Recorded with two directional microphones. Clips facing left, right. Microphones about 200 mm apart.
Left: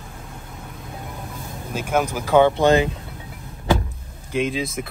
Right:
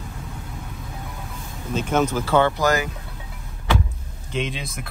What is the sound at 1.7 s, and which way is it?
Speech, 10° left (ahead or behind).